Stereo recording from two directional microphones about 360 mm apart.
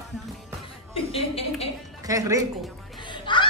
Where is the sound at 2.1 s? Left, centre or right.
Centre.